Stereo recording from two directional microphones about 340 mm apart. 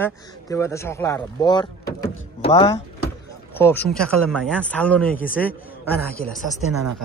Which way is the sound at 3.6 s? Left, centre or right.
Centre.